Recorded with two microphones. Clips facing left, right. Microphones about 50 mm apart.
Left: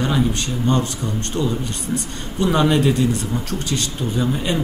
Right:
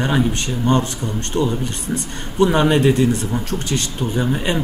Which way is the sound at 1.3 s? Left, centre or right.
Centre.